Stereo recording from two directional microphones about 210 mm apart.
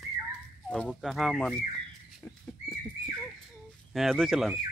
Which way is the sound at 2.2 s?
5° left (ahead or behind).